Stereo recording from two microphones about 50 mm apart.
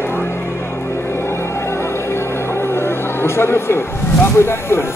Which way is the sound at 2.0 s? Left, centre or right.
Left.